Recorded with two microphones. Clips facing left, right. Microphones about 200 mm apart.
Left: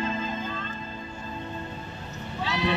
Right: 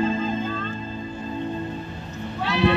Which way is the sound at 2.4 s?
60° right (ahead or behind).